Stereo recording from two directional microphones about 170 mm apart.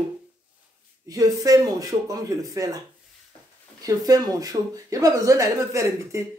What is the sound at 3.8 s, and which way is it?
Speech, 20° right (ahead or behind).